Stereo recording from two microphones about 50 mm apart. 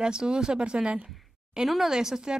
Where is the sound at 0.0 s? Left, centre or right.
Centre.